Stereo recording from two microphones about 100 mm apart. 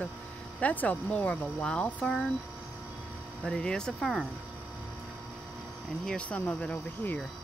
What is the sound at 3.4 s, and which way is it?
Speech, 10° left (ahead or behind).